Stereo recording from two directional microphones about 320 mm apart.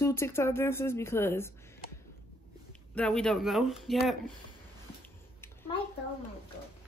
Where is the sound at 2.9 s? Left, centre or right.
Centre.